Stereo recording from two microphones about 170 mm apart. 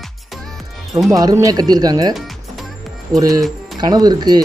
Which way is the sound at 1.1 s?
20° right (ahead or behind).